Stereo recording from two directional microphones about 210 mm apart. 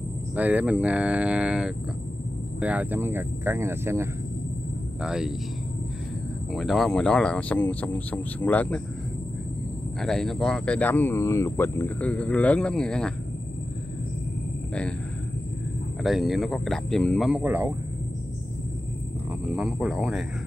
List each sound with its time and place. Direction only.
0.4 s speech: 5° right (ahead or behind)
6.5 s speech: centre (ahead or behind)
10.0 s speech: centre (ahead or behind)
14.7 s speech: 5° left (ahead or behind)
16.0 s speech: centre (ahead or behind)
19.5 s speech: 5° right (ahead or behind)